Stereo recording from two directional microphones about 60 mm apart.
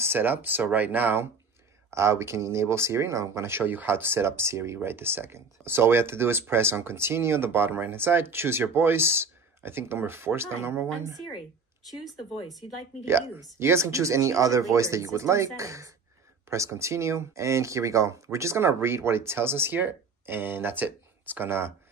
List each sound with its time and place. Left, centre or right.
0.0 s speech: right
1.9 s speech: right
3.6 s speech: right
11.8 s speech: centre
13.6 s speech: right